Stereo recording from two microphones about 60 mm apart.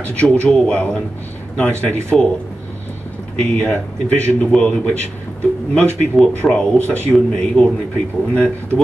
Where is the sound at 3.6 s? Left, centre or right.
Centre.